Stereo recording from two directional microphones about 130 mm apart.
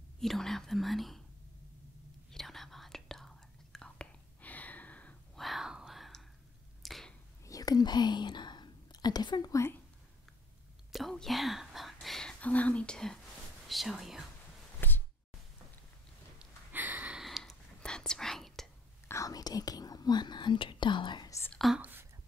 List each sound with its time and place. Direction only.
0.2 s speech: centre (ahead or behind)
2.3 s whispering: centre (ahead or behind)
5.4 s a sound: centre (ahead or behind)
7.4 s whispering: 30° left (ahead or behind)
10.9 s whispering: centre (ahead or behind)
13.7 s speech: centre (ahead or behind)
14.8 s a sound: 15° left (ahead or behind)
16.3 s whispering: 15° right (ahead or behind); by 18.7 s 5° left (ahead or behind)
19.0 s whispering: 25° left (ahead or behind)
21.5 s whispering: centre (ahead or behind)